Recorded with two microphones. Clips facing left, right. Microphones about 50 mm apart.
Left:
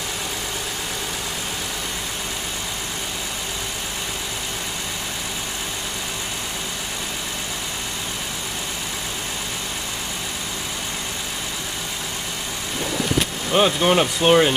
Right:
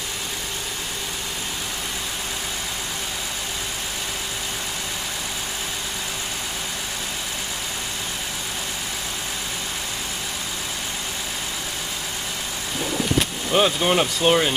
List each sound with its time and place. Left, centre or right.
13.2 s speech: centre